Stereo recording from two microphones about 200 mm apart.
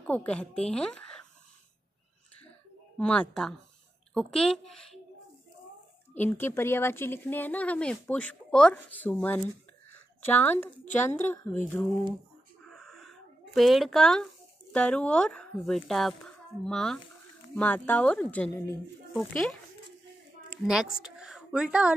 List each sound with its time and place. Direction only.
0.0 s speech: 5° left (ahead or behind)
3.0 s a woman's voice: 5° left (ahead or behind)
6.1 s speech: 10° left (ahead or behind)
10.5 s a woman's voice: 35° left (ahead or behind)
11.1 s speech: 10° left (ahead or behind)
12.7 s a sound: centre (ahead or behind)
14.7 s speech: 5° left (ahead or behind)
20.6 s a woman's voice: 5° right (ahead or behind)